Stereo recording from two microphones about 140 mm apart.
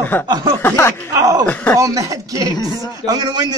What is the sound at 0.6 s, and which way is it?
Speech, 15° left (ahead or behind).